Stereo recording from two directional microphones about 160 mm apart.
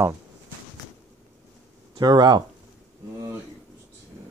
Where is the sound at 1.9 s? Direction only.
25° right (ahead or behind).